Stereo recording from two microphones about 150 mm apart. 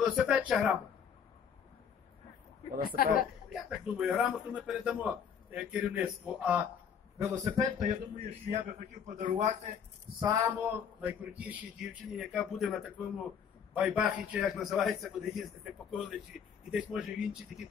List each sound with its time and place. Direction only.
0.0 s a man's voice: 5° right (ahead or behind)
3.5 s a man's voice: 5° right (ahead or behind)
7.2 s a man's voice: 20° right (ahead or behind)
7.8 s a man's voice: 55° right (ahead or behind)
10.2 s a man's voice: 25° right (ahead or behind)
10.5 s a man's voice: 10° right (ahead or behind)